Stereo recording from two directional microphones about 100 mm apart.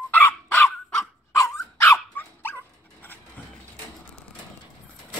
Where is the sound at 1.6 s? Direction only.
30° left (ahead or behind).